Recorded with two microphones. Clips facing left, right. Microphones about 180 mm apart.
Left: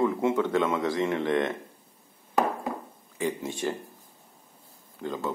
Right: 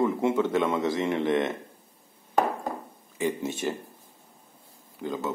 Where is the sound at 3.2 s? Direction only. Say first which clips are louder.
Right 2 dB; 20° right (ahead or behind).